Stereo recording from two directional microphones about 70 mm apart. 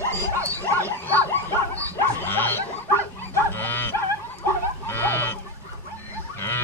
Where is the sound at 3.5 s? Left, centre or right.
Left.